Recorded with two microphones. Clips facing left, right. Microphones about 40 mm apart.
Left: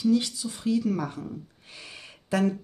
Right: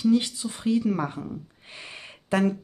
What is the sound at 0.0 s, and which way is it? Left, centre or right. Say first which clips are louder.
Speech: right 2 dB; right.